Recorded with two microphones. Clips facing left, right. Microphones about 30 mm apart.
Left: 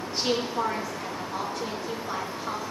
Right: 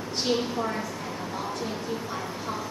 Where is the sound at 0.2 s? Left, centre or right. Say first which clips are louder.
Even; centre.